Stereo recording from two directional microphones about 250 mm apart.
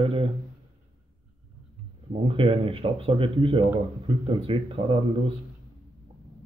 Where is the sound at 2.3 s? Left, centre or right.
Right.